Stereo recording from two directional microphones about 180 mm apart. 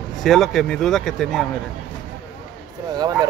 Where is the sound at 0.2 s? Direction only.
Centre (ahead or behind).